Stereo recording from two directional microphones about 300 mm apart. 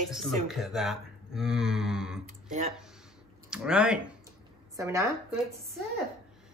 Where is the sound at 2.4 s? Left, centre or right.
Right.